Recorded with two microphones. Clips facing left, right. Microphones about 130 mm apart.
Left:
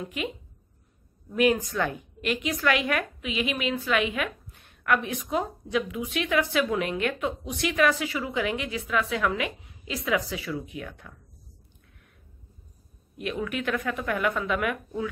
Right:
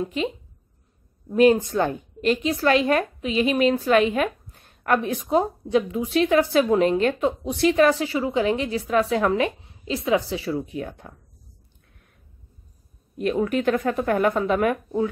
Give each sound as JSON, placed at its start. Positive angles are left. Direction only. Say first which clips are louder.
{"t": 0.0, "sound": "a woman's voice", "louder": "right 7 dB", "side_deg": -30}
{"t": 1.3, "sound": "a woman's voice", "louder": "right 6 dB", "side_deg": -35}
{"t": 13.2, "sound": "a woman's voice", "louder": "right 8 dB", "side_deg": -35}